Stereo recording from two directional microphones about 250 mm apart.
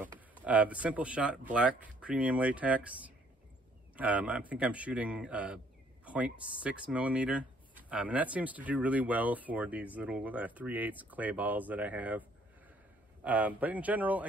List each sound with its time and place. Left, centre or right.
0.0 s speech: centre
3.9 s speech: centre